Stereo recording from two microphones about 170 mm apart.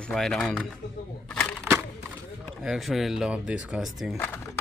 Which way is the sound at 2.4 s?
Centre (ahead or behind).